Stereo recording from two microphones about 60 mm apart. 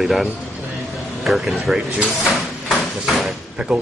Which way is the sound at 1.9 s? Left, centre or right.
Right.